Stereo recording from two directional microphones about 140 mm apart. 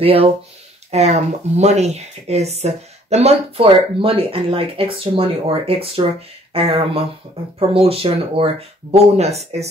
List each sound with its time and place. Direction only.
0.0 s speech: 45° right (ahead or behind)